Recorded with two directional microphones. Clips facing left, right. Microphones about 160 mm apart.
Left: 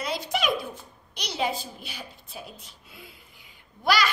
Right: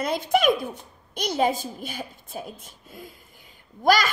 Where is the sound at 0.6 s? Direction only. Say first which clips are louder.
Right 4 dB; 50° right (ahead or behind).